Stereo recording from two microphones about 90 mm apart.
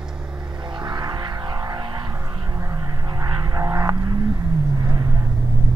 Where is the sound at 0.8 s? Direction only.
55° right (ahead or behind).